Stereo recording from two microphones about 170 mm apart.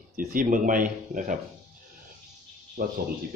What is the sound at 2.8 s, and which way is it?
Speech, 55° right (ahead or behind).